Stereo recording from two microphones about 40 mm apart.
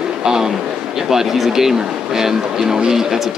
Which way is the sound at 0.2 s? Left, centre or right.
Centre.